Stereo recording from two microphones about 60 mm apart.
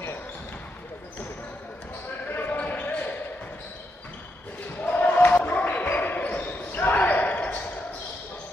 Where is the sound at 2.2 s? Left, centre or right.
Left.